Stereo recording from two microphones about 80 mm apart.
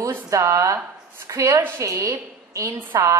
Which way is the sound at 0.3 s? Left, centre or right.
Right.